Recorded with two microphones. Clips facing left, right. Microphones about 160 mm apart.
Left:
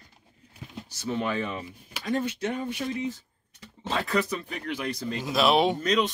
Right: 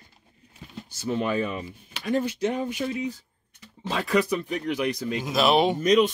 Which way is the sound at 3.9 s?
15° right (ahead or behind).